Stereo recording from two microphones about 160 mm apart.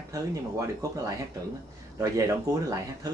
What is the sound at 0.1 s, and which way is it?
Speech, 20° right (ahead or behind).